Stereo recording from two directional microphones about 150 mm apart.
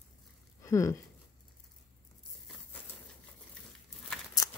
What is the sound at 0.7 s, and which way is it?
Speech, 20° left (ahead or behind).